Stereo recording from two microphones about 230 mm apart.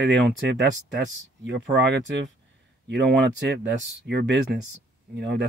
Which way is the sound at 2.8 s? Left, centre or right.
Right.